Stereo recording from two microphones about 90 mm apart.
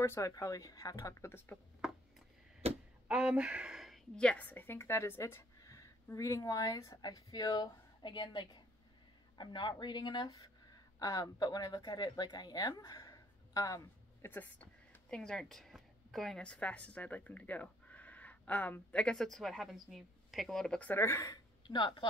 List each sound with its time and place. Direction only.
0.0 s speech: 30° left (ahead or behind)
0.3 s a woman's voice: 40° left (ahead or behind)
2.6 s a sound: 90° right
3.1 s speech: 10° right (ahead or behind)
4.2 s a woman's voice: 15° left (ahead or behind); by 10.5 s 55° left (ahead or behind)
11.0 s speech: 40° left (ahead or behind)
14.2 s speech: 20° left (ahead or behind); by 20.8 s 5° left (ahead or behind)
20.8 s speech: 25° left (ahead or behind)
21.6 s speech: 55° left (ahead or behind)